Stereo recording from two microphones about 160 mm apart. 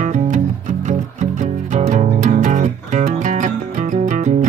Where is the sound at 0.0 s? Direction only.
50° right (ahead or behind).